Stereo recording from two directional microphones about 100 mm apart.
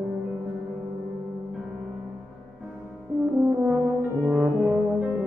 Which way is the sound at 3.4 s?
15° right (ahead or behind).